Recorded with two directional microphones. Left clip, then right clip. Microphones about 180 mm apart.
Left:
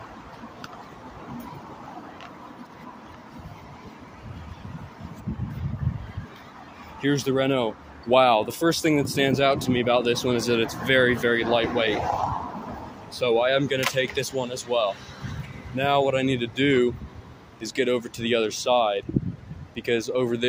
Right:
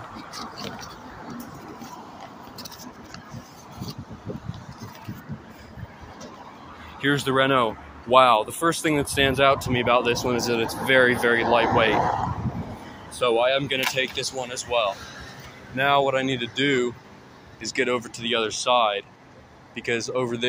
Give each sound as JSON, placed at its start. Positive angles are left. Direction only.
{"t": 7.0, "sound": "speech", "side_deg": 40}
{"t": 13.2, "sound": "speech", "side_deg": 30}